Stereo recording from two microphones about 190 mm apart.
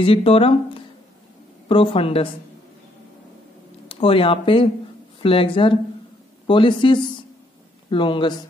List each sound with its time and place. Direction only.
0.0 s speech: 30° left (ahead or behind)
3.9 s speech: 30° left (ahead or behind)